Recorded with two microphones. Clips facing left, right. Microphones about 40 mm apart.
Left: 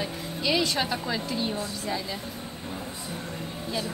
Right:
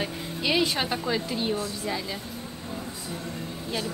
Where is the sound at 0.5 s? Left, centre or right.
Centre.